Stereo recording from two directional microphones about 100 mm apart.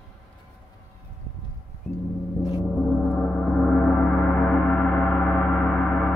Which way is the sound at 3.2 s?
5° left (ahead or behind).